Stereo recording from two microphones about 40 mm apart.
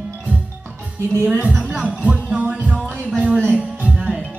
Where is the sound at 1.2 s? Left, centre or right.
Right.